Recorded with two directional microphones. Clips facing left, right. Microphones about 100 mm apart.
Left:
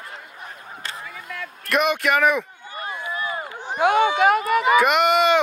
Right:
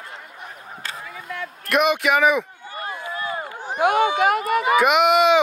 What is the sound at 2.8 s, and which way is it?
Run, 30° right (ahead or behind).